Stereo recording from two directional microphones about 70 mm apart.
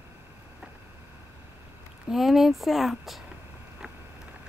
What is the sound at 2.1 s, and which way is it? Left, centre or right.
Speech, centre.